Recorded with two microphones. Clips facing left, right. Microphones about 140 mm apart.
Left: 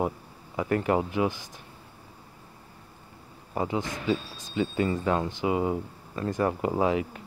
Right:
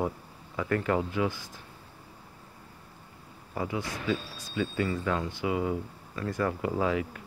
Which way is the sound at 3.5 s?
25° left (ahead or behind).